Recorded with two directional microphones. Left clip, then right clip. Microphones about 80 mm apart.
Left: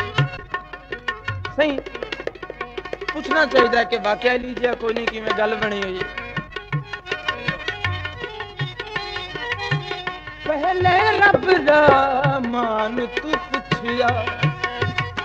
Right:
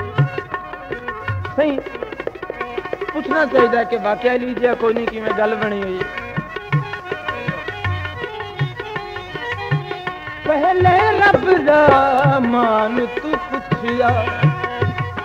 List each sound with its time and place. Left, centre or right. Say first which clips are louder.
1.6 s speech: right 2 dB; centre
5.3 s music: right 2 dB; centre
9.5 s music: right 1 dB; right